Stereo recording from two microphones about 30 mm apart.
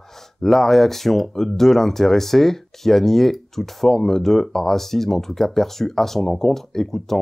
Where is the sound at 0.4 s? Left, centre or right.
Centre.